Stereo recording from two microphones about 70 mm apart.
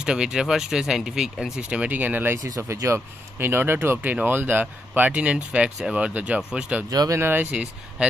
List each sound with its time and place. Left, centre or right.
0.0 s speech: centre
1.6 s speech: centre
2.3 s speech: right; by 6.8 s centre
6.9 s speech: right
7.2 s speech: right